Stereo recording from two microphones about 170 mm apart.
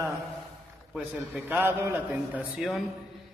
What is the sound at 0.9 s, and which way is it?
A man's voice, 5° right (ahead or behind).